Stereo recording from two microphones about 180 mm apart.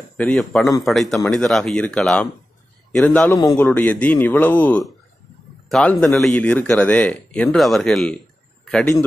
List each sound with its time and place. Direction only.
0.2 s a man's voice: centre (ahead or behind)